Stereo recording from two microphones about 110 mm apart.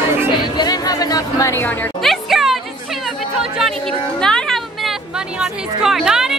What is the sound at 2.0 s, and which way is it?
Music, centre (ahead or behind).